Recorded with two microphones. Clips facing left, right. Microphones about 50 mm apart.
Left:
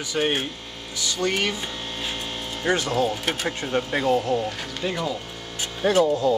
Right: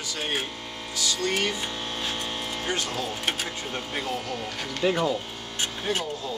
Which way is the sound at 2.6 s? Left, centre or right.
Left.